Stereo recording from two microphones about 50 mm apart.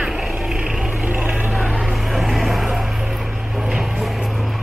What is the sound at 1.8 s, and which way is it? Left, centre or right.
Vehicle, centre.